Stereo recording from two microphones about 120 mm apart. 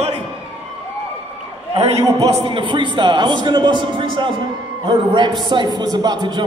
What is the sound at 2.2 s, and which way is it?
A man's voice, 40° right (ahead or behind).